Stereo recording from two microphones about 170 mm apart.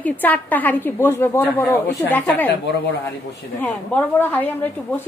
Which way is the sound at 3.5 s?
10° left (ahead or behind).